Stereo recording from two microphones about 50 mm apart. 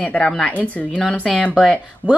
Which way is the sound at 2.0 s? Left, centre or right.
Right.